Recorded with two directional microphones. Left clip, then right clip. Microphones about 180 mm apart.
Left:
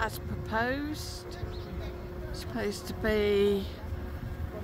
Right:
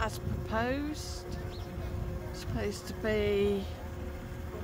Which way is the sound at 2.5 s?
10° left (ahead or behind).